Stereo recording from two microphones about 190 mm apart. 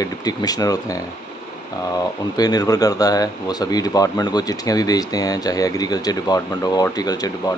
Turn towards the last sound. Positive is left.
turn(degrees=20)  # may be behind; listen again after turning